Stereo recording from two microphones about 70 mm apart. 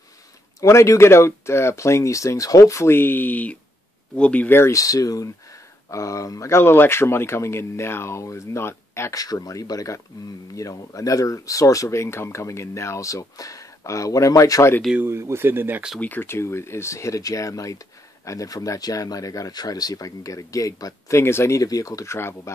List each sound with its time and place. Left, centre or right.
0.6 s speech: left; by 4.5 s centre
4.5 s speech: left
4.7 s speech: left
5.9 s speech: left
6.5 s speech: left
9.1 s speech: left
15.0 s speech: right
16.0 s speech: left
21.2 s speech: left
21.6 s speech: left